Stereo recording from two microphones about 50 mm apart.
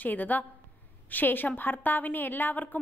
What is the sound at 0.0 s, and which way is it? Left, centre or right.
A woman's voice, left.